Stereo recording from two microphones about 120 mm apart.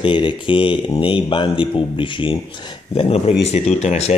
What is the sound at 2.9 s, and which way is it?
Speech, 55° left (ahead or behind).